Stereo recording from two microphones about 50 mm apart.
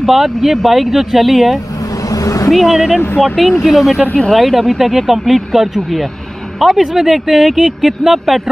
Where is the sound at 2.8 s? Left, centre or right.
Centre.